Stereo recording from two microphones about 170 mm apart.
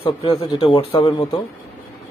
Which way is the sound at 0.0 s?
30° left (ahead or behind).